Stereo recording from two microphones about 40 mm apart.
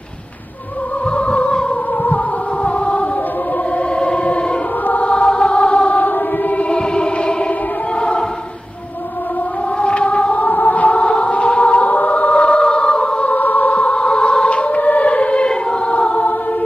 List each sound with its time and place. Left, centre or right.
1.1 s music: left
3.9 s choir: left
5.0 s music: left
6.7 s music: left
9.8 s music: left
10.3 s music: left
13.2 s music: left